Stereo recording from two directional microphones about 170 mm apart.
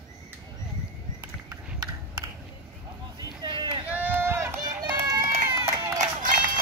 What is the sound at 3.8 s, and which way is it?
Run, 10° right (ahead or behind).